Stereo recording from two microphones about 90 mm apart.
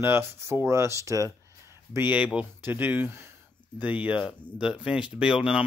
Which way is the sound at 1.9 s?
20° right (ahead or behind).